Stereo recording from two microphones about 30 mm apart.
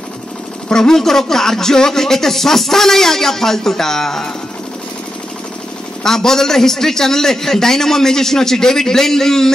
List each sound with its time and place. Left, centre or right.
0.7 s speech: centre
6.0 s speech: centre